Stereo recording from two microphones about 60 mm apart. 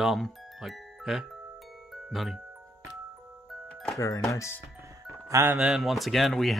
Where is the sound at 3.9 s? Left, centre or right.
Left.